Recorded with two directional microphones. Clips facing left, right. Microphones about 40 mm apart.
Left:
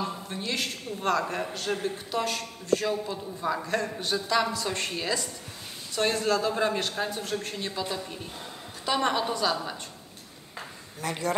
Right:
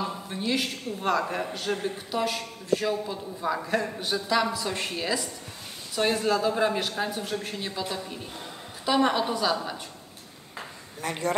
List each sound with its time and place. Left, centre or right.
0.0 s a man's voice: centre
11.0 s speech: right